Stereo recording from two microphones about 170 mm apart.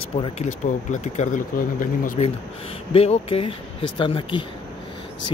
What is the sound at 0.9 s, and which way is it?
Speech, 45° left (ahead or behind).